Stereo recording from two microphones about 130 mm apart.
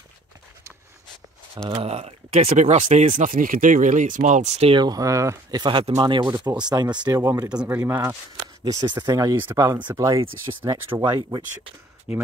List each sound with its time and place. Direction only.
1.7 s speech: 50° right (ahead or behind)
4.7 s speech: 30° right (ahead or behind)
5.6 s speech: 40° right (ahead or behind)
7.4 s speech: 10° right (ahead or behind)
8.6 s speech: 30° right (ahead or behind)
11.0 s speech: 30° right (ahead or behind)
12.1 s speech: 10° right (ahead or behind)